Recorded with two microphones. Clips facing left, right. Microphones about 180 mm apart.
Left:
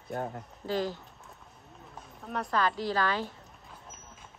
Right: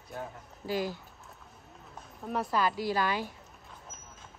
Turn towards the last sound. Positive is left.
turn(degrees=-10)  # may be behind; listen again after turning